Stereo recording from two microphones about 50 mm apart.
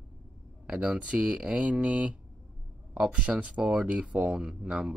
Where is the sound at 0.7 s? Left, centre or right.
Right.